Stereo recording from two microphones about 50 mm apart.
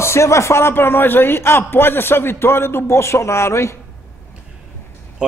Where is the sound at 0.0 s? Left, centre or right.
Left.